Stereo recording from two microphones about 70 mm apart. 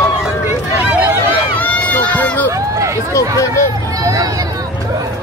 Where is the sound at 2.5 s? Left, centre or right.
Right.